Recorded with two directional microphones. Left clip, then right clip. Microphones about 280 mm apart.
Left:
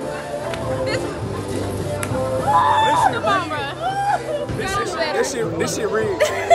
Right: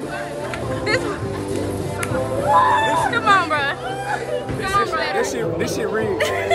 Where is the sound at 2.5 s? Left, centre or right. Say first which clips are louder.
Even; left.